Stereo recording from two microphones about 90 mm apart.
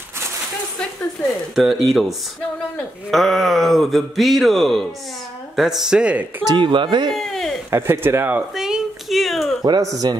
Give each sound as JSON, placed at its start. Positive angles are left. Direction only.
{"t": 1.5, "sound": "speech", "side_deg": 0}
{"t": 6.5, "sound": "speech", "side_deg": -65}
{"t": 7.1, "sound": "a sound", "side_deg": 5}
{"t": 7.7, "sound": "speech", "side_deg": -25}
{"t": 8.5, "sound": "a sound", "side_deg": -5}
{"t": 9.7, "sound": "speech", "side_deg": -40}